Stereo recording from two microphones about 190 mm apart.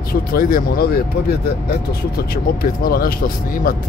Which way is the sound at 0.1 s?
50° left (ahead or behind).